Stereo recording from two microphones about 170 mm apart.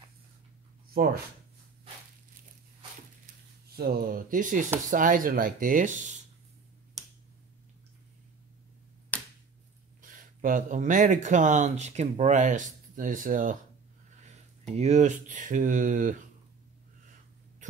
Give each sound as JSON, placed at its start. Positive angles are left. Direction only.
{"t": 0.8, "sound": "a sound", "side_deg": -60}
{"t": 3.7, "sound": "speech", "side_deg": -65}
{"t": 7.0, "sound": "finger snapping", "side_deg": 0}
{"t": 9.1, "sound": "finger snapping", "side_deg": 10}
{"t": 10.0, "sound": "speech", "side_deg": -55}
{"t": 14.7, "sound": "speech", "side_deg": -40}